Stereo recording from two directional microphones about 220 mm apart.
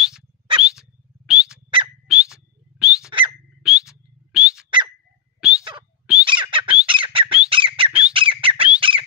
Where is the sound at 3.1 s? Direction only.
25° right (ahead or behind).